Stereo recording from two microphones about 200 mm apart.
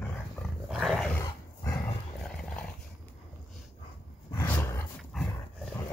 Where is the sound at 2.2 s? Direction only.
5° left (ahead or behind).